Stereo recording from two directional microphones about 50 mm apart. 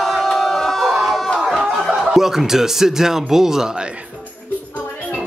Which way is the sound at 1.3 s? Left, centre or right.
Centre.